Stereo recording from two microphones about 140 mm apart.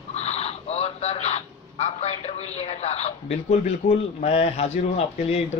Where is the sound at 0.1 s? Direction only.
50° left (ahead or behind).